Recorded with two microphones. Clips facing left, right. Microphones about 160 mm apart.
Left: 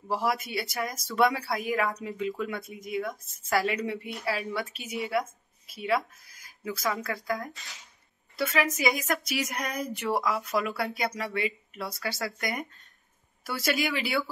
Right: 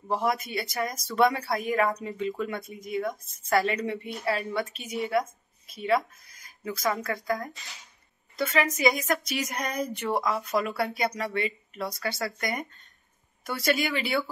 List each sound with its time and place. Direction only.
0.1 s speech: 5° left (ahead or behind)